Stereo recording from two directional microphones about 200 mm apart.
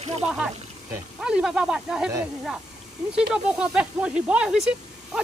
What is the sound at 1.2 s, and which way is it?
Speech, 5° right (ahead or behind).